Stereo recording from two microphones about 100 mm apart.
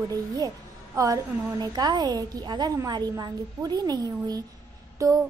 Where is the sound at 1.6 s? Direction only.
45° right (ahead or behind).